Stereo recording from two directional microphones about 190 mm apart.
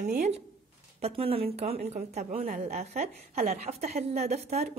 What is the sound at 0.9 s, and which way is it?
A woman's voice, 30° right (ahead or behind).